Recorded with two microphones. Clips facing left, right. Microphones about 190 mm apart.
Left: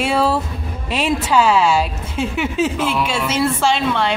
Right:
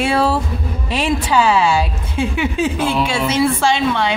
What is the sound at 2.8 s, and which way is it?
Speech, 30° right (ahead or behind).